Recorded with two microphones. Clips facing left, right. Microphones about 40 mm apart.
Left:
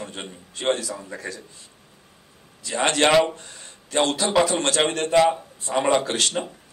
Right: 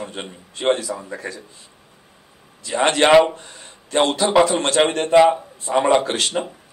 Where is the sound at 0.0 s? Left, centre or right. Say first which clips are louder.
Right 4 dB; centre.